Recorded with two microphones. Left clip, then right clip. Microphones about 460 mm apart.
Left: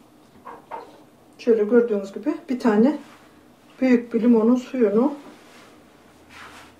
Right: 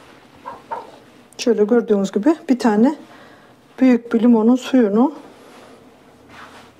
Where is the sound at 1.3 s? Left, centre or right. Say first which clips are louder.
Right 2 dB; right.